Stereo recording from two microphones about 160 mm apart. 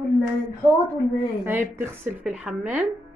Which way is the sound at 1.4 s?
15° right (ahead or behind).